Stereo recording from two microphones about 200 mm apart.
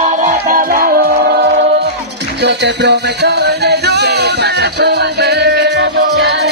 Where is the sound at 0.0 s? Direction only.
40° right (ahead or behind).